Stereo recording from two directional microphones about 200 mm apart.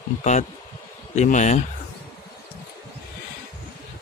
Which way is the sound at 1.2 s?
35° left (ahead or behind).